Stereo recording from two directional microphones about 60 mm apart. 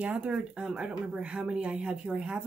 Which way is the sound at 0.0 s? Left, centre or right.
Right.